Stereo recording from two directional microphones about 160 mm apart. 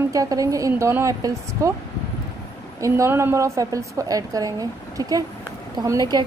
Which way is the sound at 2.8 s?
15° right (ahead or behind).